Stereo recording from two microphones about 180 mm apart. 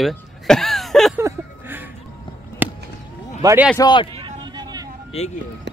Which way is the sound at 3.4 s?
10° right (ahead or behind).